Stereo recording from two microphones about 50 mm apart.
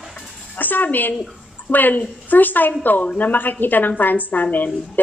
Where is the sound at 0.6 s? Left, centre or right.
Left.